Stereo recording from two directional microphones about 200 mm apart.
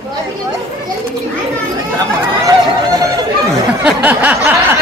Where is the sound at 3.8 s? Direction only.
10° right (ahead or behind).